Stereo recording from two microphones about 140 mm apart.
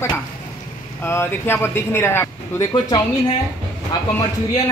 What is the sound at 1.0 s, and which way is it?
Speech, 15° left (ahead or behind).